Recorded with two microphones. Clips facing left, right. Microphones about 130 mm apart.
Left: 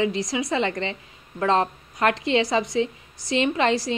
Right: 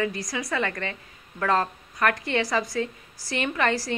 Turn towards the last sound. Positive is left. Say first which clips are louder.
# left 4 dB
turn(degrees=20)  # may be behind; listen again after turning